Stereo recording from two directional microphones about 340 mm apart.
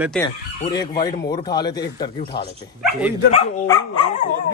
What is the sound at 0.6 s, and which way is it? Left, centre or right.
Speech, centre.